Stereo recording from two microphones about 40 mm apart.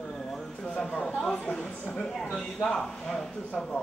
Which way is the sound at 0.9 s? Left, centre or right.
Left.